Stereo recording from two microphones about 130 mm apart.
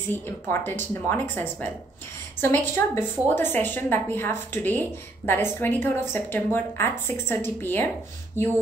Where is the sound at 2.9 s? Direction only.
15° left (ahead or behind).